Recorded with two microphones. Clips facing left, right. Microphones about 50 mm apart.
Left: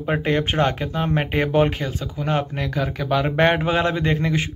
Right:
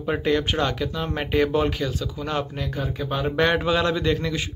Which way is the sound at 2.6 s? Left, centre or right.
Left.